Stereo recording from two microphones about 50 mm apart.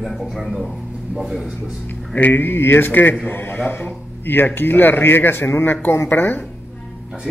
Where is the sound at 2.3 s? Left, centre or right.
Left.